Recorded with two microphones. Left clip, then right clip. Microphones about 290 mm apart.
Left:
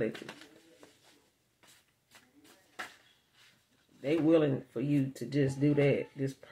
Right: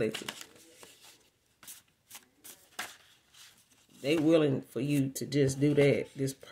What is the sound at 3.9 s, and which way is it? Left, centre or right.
Speech, right.